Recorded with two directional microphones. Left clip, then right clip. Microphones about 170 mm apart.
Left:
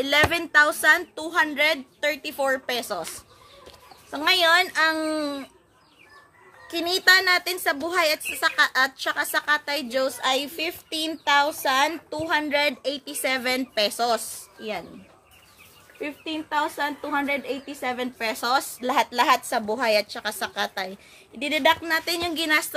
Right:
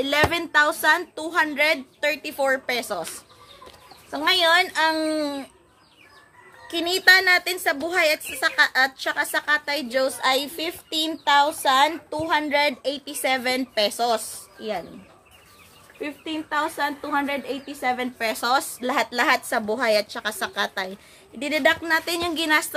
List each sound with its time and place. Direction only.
0.0 s a woman's voice: centre (ahead or behind)
4.1 s a woman's voice: 15° left (ahead or behind)
6.7 s a woman's voice: 10° left (ahead or behind)
16.0 s a woman's voice: 5° left (ahead or behind)